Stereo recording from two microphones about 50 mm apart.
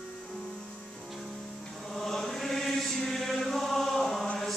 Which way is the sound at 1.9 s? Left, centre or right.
Centre.